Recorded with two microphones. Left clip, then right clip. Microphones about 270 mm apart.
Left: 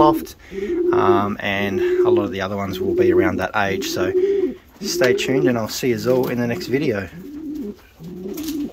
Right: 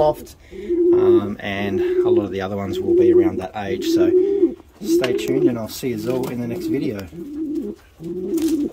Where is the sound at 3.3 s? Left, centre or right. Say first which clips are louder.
Left 5 dB; centre.